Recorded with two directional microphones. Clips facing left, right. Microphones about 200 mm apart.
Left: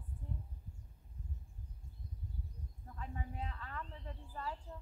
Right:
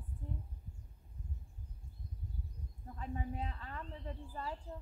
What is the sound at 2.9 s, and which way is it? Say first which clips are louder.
Speech: right 4 dB; 25° right (ahead or behind).